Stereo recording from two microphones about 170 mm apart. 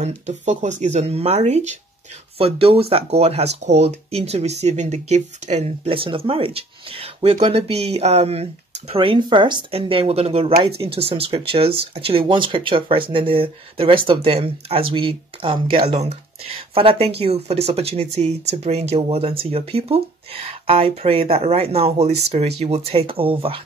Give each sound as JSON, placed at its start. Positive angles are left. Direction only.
{"t": 0.0, "sound": "speech", "side_deg": -40}